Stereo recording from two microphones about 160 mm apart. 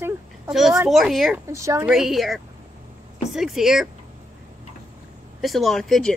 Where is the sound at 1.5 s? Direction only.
20° right (ahead or behind).